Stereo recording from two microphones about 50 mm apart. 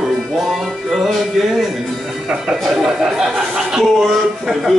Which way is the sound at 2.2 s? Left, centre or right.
Centre.